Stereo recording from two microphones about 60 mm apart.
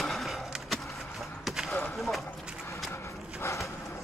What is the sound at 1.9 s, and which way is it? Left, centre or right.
Speech, centre.